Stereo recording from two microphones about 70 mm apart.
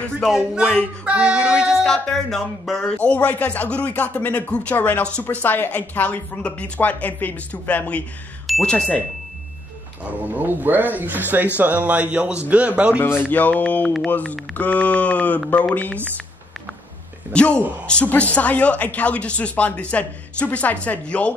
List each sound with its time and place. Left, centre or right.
1.0 s child singing: centre
1.7 s a woman's voice: centre
10.2 s a man's voice: right
13.0 s a woman's voice: left
17.3 s a woman's voice: centre